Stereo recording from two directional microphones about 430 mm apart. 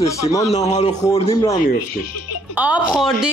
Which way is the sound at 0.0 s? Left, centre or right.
Centre.